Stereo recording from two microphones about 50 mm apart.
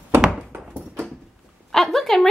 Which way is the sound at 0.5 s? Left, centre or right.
Right.